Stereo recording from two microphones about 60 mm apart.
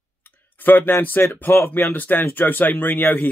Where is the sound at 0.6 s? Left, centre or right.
Left.